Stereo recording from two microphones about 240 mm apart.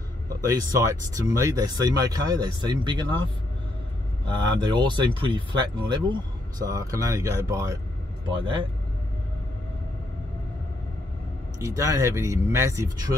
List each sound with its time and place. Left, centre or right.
0.5 s speech: centre
4.3 s speech: centre
11.6 s speech: centre